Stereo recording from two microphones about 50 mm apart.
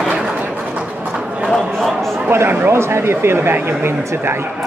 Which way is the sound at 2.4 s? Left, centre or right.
Right.